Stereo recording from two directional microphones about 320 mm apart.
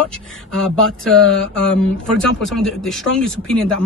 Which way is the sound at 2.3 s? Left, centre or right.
Centre.